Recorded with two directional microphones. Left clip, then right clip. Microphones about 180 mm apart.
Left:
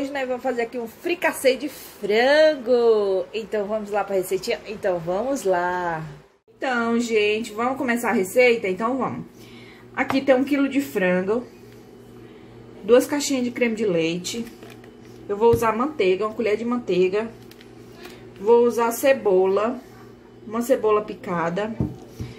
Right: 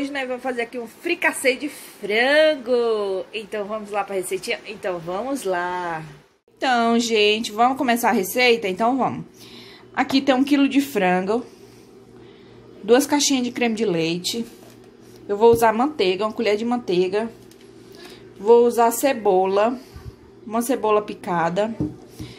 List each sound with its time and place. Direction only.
0.0 s a woman's voice: centre (ahead or behind)
6.6 s a woman's voice: 55° right (ahead or behind)
12.8 s a woman's voice: 50° right (ahead or behind)
18.4 s a woman's voice: 55° right (ahead or behind)